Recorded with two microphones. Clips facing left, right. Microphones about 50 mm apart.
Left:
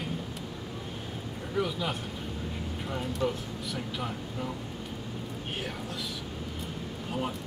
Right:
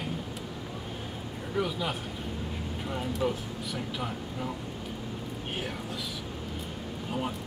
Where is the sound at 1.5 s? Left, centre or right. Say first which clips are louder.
Even; centre.